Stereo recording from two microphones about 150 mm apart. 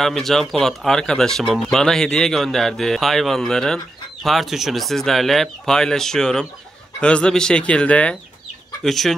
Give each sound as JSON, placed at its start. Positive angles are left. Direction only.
{"t": 0.0, "sound": "speech", "side_deg": 0}